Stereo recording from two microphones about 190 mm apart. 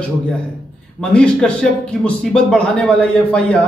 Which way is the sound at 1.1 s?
5° left (ahead or behind).